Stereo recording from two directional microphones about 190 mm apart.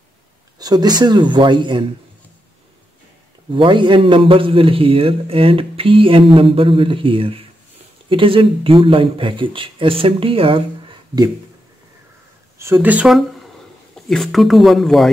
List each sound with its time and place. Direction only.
0.6 s a man's voice: 20° right (ahead or behind)
3.5 s a man's voice: 25° right (ahead or behind)
12.5 s speech: 10° right (ahead or behind)